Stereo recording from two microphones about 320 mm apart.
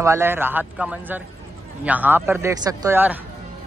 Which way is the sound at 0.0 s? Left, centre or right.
Centre.